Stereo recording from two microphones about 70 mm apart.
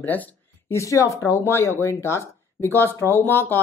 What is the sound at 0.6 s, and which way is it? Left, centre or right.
Speech, left.